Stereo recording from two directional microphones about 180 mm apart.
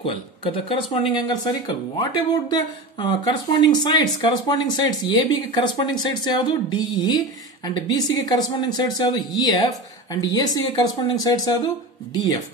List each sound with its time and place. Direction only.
0.0 s speech: 30° left (ahead or behind)